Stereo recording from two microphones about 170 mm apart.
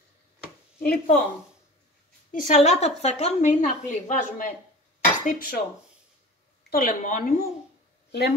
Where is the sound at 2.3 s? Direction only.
45° left (ahead or behind).